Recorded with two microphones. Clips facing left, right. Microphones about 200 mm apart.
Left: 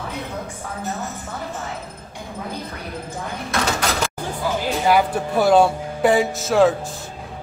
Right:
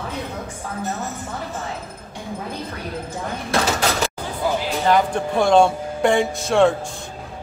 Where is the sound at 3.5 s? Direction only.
30° right (ahead or behind).